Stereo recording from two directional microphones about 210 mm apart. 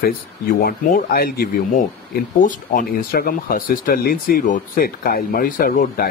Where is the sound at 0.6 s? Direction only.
45° left (ahead or behind).